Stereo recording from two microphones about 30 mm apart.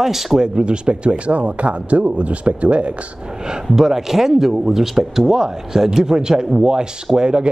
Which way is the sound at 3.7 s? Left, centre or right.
Centre.